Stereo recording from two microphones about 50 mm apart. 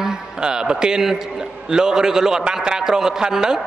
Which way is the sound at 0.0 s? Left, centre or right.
Centre.